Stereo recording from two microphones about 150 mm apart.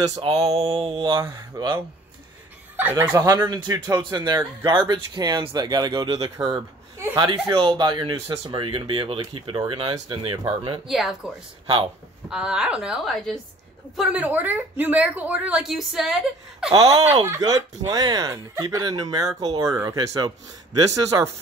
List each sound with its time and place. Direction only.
0.5 s speech: 45° right (ahead or behind)
1.2 s speech: 25° right (ahead or behind)
2.8 s speech: 15° right (ahead or behind); by 10.8 s 35° right (ahead or behind)
10.9 s a woman's voice: centre (ahead or behind)
11.6 s speech: 40° right (ahead or behind)
12.3 s a woman's voice: 5° right (ahead or behind)
16.9 s speech: 45° right (ahead or behind)
17.3 s speech: 25° right (ahead or behind)